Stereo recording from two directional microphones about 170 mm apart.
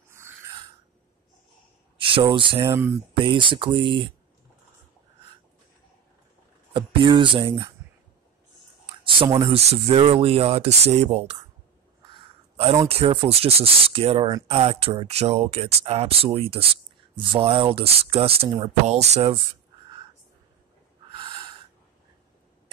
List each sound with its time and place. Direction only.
2.0 s speech: 30° right (ahead or behind)
6.7 s speech: 30° right (ahead or behind)
8.8 s a sound: 30° right (ahead or behind)
9.5 s speech: 35° right (ahead or behind)
12.8 s speech: 35° right (ahead or behind)
21.1 s a sound: 30° right (ahead or behind)